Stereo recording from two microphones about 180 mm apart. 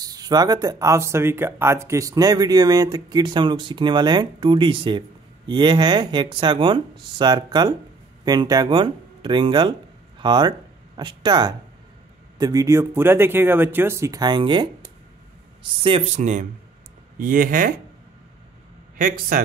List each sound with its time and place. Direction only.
0.0 s speech: 20° right (ahead or behind)
16.2 s speech: 45° right (ahead or behind)
18.9 s speech: 50° right (ahead or behind)